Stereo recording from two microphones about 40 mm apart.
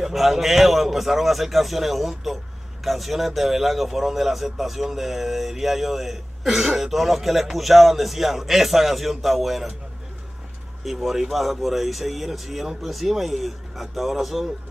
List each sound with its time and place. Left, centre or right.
0.0 s a man's voice: centre
10.8 s a man's voice: centre